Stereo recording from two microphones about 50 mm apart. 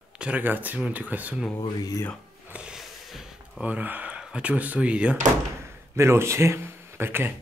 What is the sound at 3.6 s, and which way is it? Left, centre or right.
Speech, right.